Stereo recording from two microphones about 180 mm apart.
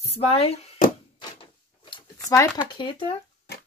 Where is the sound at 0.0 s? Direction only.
35° left (ahead or behind).